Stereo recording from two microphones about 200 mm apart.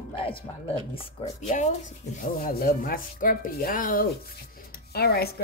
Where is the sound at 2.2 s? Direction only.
45° left (ahead or behind).